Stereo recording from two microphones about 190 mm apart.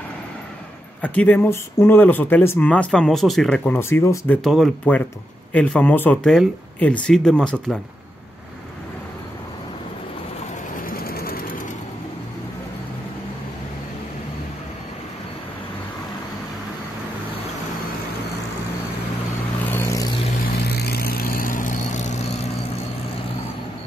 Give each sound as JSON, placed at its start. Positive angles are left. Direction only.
{"t": 1.0, "sound": "speech", "side_deg": 5}
{"t": 4.4, "sound": "speech", "side_deg": 0}
{"t": 10.9, "sound": "a sound", "side_deg": 50}
{"t": 19.7, "sound": "vehicle", "side_deg": 15}
{"t": 20.6, "sound": "vehicle", "side_deg": 55}